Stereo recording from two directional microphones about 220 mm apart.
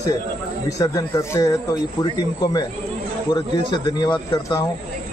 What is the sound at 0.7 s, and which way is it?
A man's voice, 15° left (ahead or behind).